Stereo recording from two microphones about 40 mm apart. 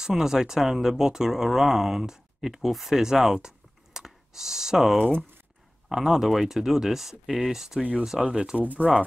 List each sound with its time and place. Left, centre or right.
0.2 s speech: centre
3.3 s clicking: centre
5.9 s speech: centre
8.5 s speech: right